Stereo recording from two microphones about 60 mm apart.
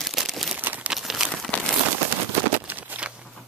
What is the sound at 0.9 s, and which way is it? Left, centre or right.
Crumpling, centre.